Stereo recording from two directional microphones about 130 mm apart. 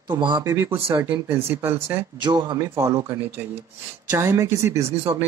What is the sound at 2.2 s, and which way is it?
Speech, 35° right (ahead or behind).